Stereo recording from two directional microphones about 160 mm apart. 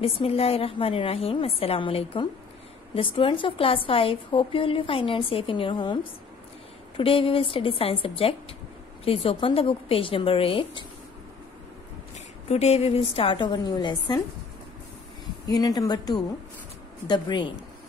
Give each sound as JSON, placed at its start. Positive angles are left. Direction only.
{"t": 0.0, "sound": "a woman's voice", "side_deg": 35}
{"t": 7.0, "sound": "a woman's voice", "side_deg": 35}
{"t": 12.4, "sound": "a woman's voice", "side_deg": 40}
{"t": 15.4, "sound": "speech", "side_deg": 25}